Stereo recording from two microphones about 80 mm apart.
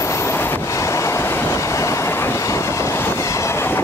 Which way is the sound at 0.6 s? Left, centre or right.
Left.